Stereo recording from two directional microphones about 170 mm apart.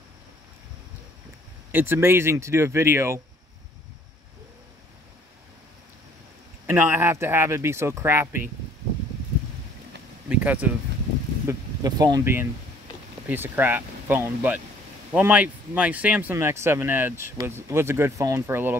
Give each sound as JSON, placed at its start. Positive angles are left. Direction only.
{"t": 1.7, "sound": "speech", "side_deg": -10}
{"t": 6.6, "sound": "speech", "side_deg": -10}
{"t": 10.4, "sound": "speech", "side_deg": -10}
{"t": 11.4, "sound": "speech", "side_deg": -20}